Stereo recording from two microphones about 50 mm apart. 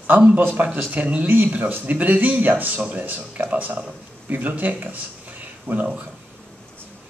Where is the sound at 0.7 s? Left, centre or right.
Right.